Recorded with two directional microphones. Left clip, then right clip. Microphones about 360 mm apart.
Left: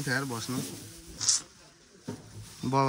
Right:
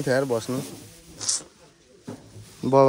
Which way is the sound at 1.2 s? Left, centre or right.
Centre.